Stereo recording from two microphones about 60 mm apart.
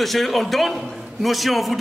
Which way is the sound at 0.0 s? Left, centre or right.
Centre.